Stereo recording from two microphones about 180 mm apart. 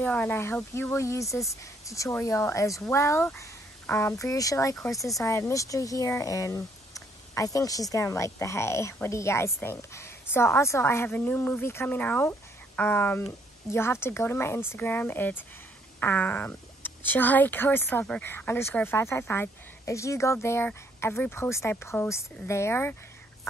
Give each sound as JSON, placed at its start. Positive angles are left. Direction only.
{"t": 0.0, "sound": "speech", "side_deg": 10}